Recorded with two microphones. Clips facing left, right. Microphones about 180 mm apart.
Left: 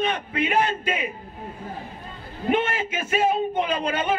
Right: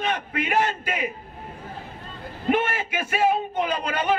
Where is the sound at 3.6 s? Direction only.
25° left (ahead or behind).